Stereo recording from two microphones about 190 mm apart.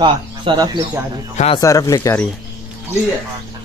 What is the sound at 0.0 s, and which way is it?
Speech, 25° right (ahead or behind).